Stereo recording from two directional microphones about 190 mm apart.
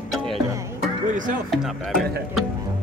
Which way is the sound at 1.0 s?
45° right (ahead or behind).